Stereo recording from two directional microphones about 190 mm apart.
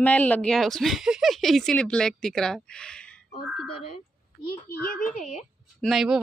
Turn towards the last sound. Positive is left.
turn(degrees=0)  # may be behind; listen again after turning